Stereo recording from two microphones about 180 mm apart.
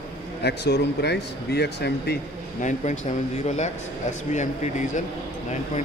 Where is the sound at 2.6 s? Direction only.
40° left (ahead or behind).